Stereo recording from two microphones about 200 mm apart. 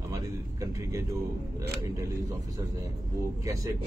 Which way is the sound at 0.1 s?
15° right (ahead or behind).